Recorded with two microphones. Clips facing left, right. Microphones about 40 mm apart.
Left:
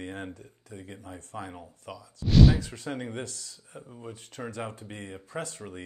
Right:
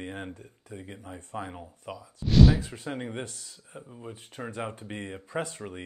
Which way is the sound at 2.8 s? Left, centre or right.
Centre.